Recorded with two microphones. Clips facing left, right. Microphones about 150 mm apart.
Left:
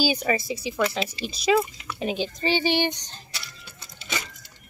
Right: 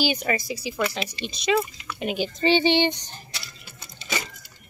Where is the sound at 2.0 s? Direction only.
25° left (ahead or behind).